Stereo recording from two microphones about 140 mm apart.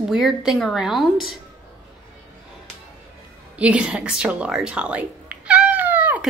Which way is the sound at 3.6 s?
10° right (ahead or behind).